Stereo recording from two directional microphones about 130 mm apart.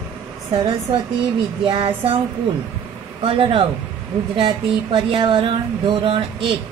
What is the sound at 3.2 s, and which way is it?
Speech, 45° right (ahead or behind).